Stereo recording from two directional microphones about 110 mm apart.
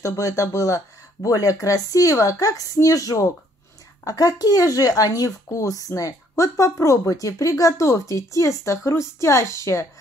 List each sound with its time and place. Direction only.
0.0 s speech: 30° left (ahead or behind)